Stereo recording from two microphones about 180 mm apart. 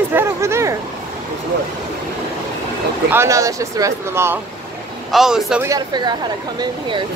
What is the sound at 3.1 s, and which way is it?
Speech, 15° right (ahead or behind).